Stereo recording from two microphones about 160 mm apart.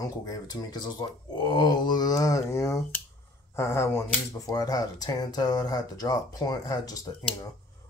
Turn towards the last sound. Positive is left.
turn(degrees=25)  # may be behind; listen again after turning